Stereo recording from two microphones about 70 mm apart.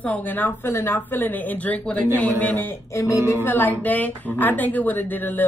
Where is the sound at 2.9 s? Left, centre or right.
Left.